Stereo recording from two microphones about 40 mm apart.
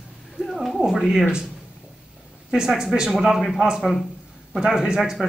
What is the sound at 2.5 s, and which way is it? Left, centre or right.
Speech, centre.